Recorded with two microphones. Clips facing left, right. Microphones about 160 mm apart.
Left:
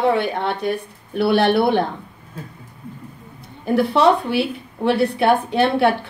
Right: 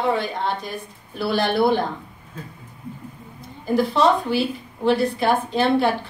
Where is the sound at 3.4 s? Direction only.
60° left (ahead or behind).